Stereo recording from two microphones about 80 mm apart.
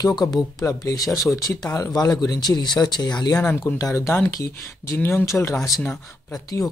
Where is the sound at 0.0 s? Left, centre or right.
Left.